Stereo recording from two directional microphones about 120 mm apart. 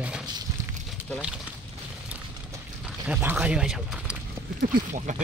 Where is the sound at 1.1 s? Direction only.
5° right (ahead or behind).